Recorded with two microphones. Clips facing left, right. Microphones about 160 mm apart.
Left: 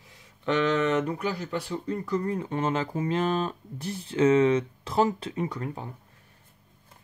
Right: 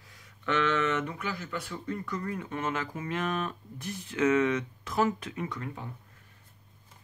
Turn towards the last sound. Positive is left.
turn(degrees=35)  # may be behind; listen again after turning